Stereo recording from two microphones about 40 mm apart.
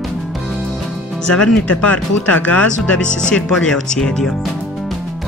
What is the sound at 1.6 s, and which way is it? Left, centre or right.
Speech, left.